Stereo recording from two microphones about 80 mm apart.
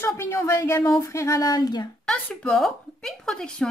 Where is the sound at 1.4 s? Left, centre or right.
Left.